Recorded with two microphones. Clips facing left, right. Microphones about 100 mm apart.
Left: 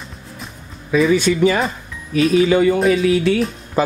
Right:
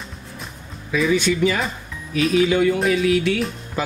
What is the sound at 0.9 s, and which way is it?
Speech, 35° left (ahead or behind).